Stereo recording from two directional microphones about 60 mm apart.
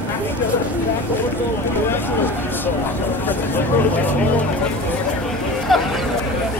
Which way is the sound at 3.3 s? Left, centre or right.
Left.